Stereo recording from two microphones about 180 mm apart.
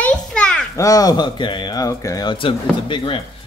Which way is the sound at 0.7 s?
20° left (ahead or behind).